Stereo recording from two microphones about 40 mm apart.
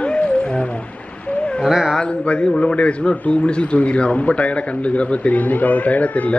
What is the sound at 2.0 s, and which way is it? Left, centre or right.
A man's voice, left.